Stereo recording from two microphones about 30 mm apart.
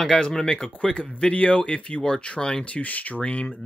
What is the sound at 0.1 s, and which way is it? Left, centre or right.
Speech, centre.